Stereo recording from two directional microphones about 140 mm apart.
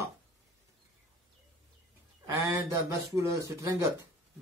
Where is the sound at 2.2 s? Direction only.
20° right (ahead or behind).